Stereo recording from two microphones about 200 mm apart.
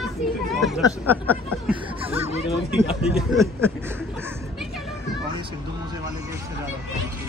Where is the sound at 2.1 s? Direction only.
30° right (ahead or behind).